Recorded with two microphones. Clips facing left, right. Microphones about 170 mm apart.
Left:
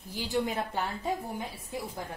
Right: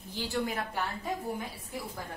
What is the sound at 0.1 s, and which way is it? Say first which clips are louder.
Speech: left 2 dB; 15° left (ahead or behind).